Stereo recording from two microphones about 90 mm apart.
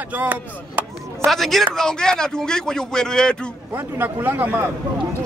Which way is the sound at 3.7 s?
25° right (ahead or behind).